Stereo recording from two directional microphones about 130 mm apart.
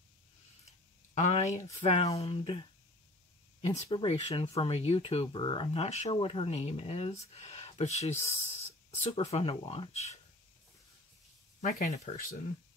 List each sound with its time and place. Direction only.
1.1 s speech: 65° left (ahead or behind)
1.8 s speech: 50° left (ahead or behind)
3.9 s speech: 50° left (ahead or behind)
5.8 s speech: 60° left (ahead or behind)
11.6 s speech: 80° left